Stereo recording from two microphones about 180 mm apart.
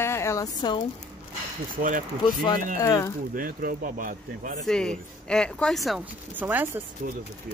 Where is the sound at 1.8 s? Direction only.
50° right (ahead or behind).